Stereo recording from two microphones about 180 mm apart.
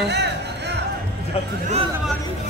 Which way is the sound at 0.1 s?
70° right (ahead or behind).